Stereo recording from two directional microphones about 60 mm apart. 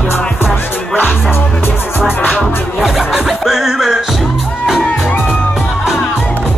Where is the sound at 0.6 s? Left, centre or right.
Left.